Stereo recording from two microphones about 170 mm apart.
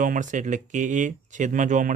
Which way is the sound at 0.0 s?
50° right (ahead or behind).